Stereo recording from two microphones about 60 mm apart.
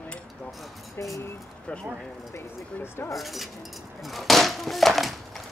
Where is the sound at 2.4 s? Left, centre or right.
Left.